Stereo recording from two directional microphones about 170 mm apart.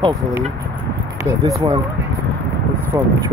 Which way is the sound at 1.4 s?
20° right (ahead or behind).